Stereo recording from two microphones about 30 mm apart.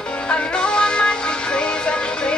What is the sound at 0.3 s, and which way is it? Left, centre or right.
Music, left.